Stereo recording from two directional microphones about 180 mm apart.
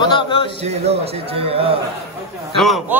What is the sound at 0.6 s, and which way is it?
A man's voice, 35° right (ahead or behind).